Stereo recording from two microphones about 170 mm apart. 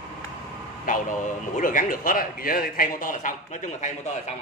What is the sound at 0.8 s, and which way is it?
A man's voice, 50° left (ahead or behind).